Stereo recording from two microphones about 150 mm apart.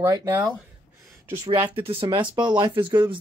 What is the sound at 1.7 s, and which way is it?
Speech, 40° right (ahead or behind).